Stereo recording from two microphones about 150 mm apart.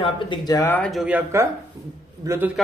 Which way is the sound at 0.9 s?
10° right (ahead or behind).